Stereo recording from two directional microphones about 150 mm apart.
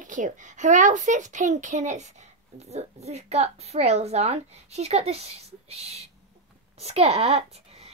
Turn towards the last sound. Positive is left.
turn(degrees=-45)  # may be behind; listen again after turning